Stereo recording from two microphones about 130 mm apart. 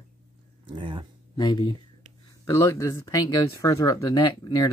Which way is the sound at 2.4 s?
25° left (ahead or behind).